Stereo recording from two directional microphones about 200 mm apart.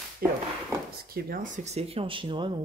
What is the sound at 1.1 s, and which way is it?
Speech, 50° right (ahead or behind).